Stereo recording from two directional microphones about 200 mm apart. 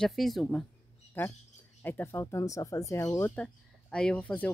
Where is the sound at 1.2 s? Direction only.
15° left (ahead or behind).